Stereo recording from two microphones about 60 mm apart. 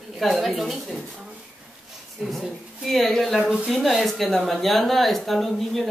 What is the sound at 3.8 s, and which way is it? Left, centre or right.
A woman's voice, centre.